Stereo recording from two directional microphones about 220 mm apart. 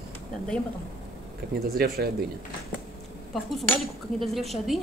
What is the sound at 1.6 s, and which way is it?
Speech, 45° right (ahead or behind).